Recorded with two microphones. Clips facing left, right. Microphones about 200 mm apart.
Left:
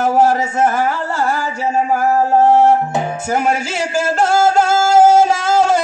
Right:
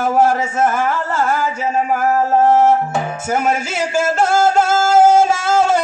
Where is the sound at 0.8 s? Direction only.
40° left (ahead or behind).